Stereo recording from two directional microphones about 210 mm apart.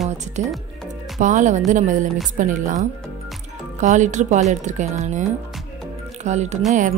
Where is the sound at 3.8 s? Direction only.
35° right (ahead or behind).